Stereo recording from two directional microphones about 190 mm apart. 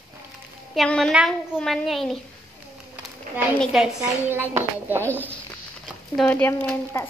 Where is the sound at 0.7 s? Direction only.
5° left (ahead or behind).